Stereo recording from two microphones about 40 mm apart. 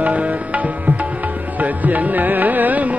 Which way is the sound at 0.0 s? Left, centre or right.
Right.